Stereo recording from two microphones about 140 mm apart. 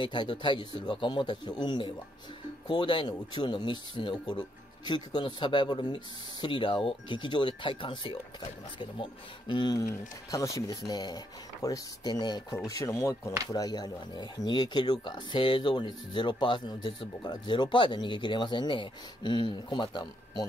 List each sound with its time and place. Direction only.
0.0 s speech: 35° left (ahead or behind)